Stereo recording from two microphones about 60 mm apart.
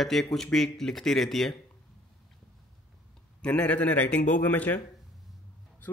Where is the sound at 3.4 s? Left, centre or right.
Left.